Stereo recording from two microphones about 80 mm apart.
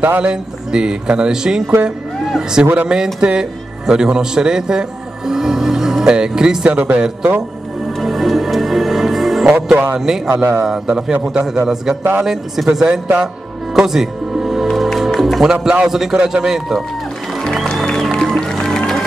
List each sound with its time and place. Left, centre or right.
0.2 s a man's voice: centre
2.6 s speech: centre
8.0 s music: centre
9.5 s a man's voice: centre
10.3 s a man's voice: right
10.6 s a man's voice: centre
13.7 s music: centre
15.1 s speech: centre
17.4 s music: centre